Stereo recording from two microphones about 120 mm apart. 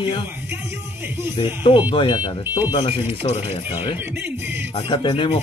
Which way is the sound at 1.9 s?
40° left (ahead or behind).